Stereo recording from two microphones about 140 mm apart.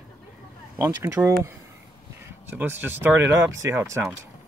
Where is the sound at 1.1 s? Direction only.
20° right (ahead or behind).